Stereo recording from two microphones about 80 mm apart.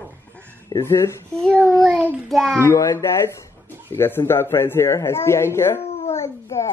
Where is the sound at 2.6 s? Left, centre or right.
Left.